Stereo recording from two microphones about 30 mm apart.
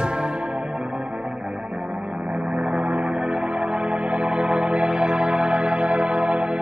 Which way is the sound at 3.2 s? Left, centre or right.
Right.